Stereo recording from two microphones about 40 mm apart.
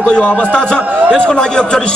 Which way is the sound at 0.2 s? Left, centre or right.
Left.